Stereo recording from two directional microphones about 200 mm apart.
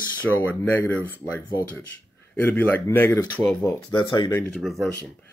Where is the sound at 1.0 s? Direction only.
10° left (ahead or behind).